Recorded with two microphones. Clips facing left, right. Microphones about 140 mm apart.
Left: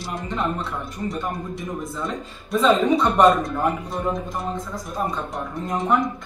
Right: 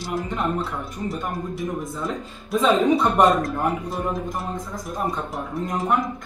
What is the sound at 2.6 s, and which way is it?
Speech, 15° right (ahead or behind).